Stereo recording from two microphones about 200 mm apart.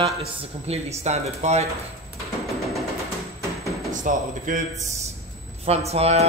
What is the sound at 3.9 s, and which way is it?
Speech, 40° right (ahead or behind).